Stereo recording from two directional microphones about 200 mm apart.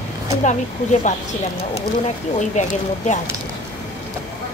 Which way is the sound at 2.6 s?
35° left (ahead or behind).